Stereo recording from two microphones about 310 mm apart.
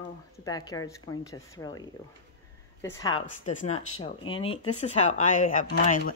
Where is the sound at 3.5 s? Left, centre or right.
Left.